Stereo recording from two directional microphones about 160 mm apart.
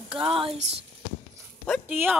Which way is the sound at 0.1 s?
35° right (ahead or behind).